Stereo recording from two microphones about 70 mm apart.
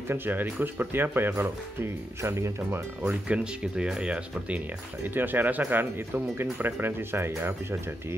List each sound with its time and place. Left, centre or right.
0.1 s speech: right
3.0 s speech: centre
5.0 s speech: right